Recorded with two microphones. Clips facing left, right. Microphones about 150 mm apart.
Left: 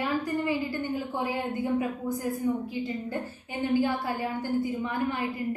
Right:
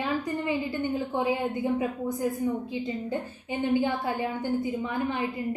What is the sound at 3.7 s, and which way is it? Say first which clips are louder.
A woman's voice: even; 20° right (ahead or behind).